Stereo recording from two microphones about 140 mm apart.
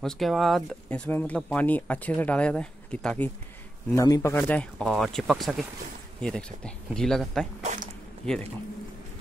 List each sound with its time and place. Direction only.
0.0 s speech: centre (ahead or behind)
3.9 s speech: 20° left (ahead or behind); by 7.4 s 5° left (ahead or behind)
7.6 s zipper: 60° right (ahead or behind)